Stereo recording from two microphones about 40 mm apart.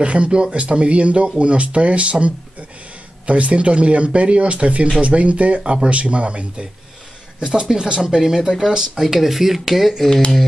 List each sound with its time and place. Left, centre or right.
0.0 s speech: right
5.6 s speech: centre
5.9 s speech: right; by 10.0 s centre